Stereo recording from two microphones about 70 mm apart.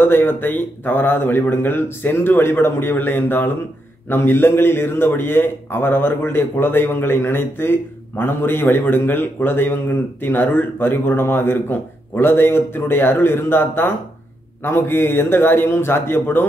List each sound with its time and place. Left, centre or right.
0.0 s a man's voice: left